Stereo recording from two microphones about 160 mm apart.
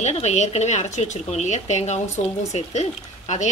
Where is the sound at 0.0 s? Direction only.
45° left (ahead or behind).